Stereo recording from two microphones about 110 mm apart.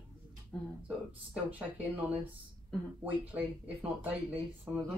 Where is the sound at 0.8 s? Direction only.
15° right (ahead or behind).